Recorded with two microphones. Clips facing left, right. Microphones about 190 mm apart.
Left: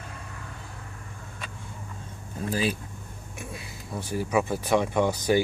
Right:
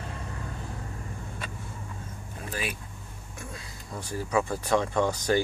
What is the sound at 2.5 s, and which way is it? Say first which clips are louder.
Speech: left 7 dB; 30° left (ahead or behind).